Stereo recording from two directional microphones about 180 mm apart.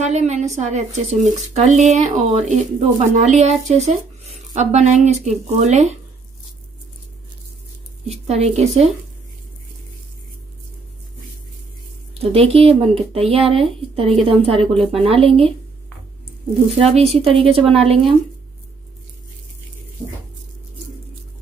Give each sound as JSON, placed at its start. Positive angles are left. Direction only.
{"t": 0.0, "sound": "speech", "side_deg": -40}
{"t": 8.1, "sound": "speech", "side_deg": -35}
{"t": 12.1, "sound": "speech", "side_deg": -35}
{"t": 14.7, "sound": "a woman's voice", "side_deg": 0}
{"t": 15.0, "sound": "speech", "side_deg": -30}
{"t": 16.9, "sound": "speech", "side_deg": -35}